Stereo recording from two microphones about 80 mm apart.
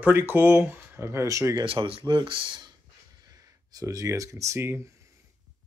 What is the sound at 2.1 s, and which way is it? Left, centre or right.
Speech, right.